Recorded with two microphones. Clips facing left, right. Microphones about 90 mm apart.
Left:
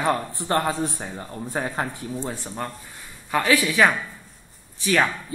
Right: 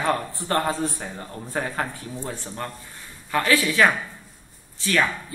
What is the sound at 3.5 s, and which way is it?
Speech, 15° left (ahead or behind).